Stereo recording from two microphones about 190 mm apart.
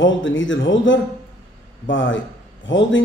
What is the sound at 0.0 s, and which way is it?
A man's voice, 80° left.